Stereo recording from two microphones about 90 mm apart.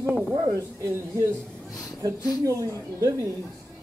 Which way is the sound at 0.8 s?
30° right (ahead or behind).